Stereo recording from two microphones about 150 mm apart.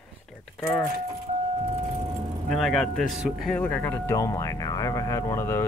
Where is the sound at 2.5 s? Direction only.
Centre (ahead or behind).